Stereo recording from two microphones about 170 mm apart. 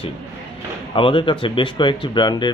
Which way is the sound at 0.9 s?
30° left (ahead or behind).